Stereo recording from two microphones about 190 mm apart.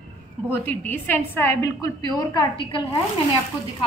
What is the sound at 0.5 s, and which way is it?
A woman's voice, 10° left (ahead or behind).